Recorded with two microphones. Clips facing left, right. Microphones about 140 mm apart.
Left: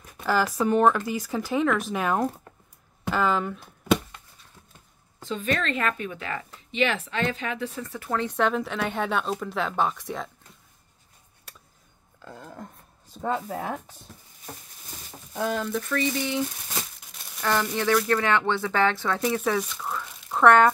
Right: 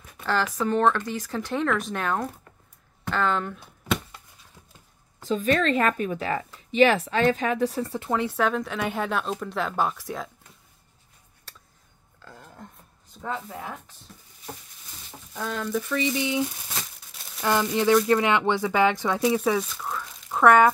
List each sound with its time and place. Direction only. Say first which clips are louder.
0.2 s speech: left 2 dB; 10° left (ahead or behind)
3.1 s a sound: left 1 dB; 5° left (ahead or behind)
5.2 s speech: right 5 dB; 40° right (ahead or behind)
8.1 s speech: even; 15° right (ahead or behind)
8.4 s a woman's voice: even; centre (ahead or behind)
12.3 s a sound: left 5 dB; 30° left (ahead or behind)
15.4 s a woman's voice: left 1 dB; 5° left (ahead or behind)
15.8 s speech: right 1 dB; 15° right (ahead or behind)